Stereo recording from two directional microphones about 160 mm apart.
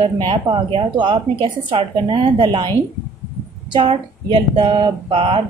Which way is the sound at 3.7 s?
30° right (ahead or behind).